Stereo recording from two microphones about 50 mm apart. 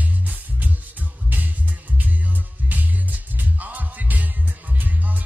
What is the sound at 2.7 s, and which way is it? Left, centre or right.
Music, right.